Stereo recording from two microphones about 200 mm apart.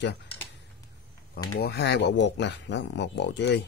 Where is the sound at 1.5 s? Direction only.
55° left (ahead or behind).